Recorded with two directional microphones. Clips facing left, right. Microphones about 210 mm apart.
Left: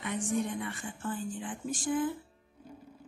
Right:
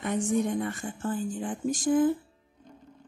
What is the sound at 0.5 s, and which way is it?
Speech, 45° right (ahead or behind).